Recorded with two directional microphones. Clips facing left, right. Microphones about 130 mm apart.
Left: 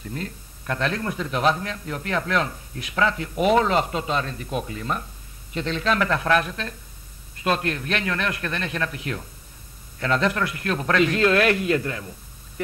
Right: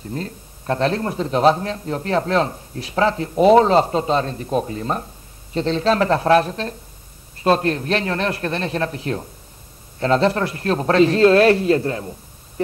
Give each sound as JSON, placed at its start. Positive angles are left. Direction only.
{"t": 0.1, "sound": "a man's voice", "side_deg": -35}